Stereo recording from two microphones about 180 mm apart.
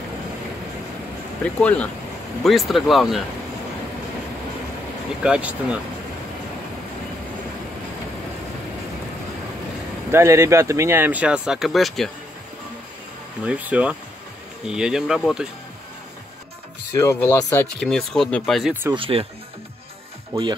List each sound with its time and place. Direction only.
1.4 s speech: 5° left (ahead or behind)
5.2 s speech: 5° right (ahead or behind)
10.1 s speech: 15° right (ahead or behind); by 12.1 s centre (ahead or behind)
13.5 s speech: 5° right (ahead or behind)
17.0 s speech: 15° left (ahead or behind)
17.7 s speech: 5° left (ahead or behind)
18.9 s speech: 30° right (ahead or behind)
20.3 s speech: 25° right (ahead or behind)